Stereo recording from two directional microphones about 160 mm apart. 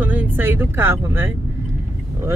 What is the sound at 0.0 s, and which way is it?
Speech, 10° right (ahead or behind).